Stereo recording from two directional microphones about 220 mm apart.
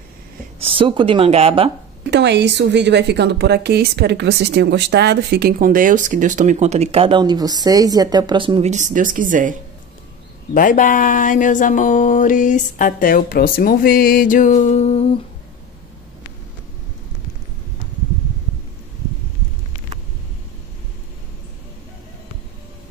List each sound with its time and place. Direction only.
0.6 s speech: 25° right (ahead or behind)
2.0 s a woman's voice: 50° right (ahead or behind); by 9.6 s 35° right (ahead or behind)
10.5 s speech: 40° left (ahead or behind)